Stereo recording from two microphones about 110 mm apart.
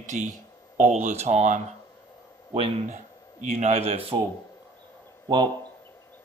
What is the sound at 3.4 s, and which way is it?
Speech, 90° right.